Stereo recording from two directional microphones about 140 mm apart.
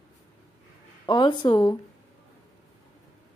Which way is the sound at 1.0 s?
35° left (ahead or behind).